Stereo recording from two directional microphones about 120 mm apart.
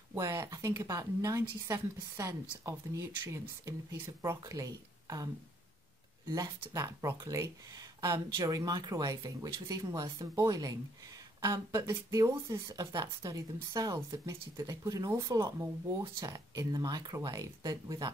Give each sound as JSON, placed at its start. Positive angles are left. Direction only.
{"t": 0.1, "sound": "a woman's voice", "side_deg": -20}
{"t": 16.3, "sound": "speech", "side_deg": -30}